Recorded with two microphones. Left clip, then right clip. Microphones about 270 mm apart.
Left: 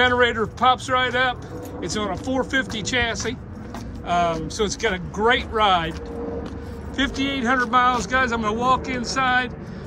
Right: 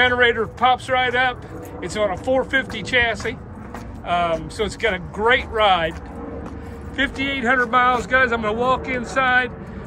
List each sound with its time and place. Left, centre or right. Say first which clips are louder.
0.0 s speech: right 2 dB; centre
7.0 s speech: right 2 dB; centre